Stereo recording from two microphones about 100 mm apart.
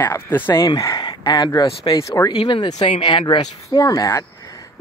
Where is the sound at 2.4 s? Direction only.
60° left (ahead or behind).